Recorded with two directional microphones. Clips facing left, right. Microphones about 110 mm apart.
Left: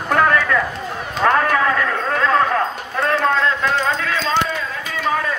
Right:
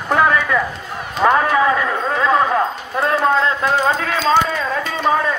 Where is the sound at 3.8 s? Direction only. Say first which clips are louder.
Right 3 dB; 40° right (ahead or behind).